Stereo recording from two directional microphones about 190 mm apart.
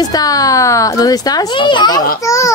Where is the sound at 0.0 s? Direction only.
20° left (ahead or behind).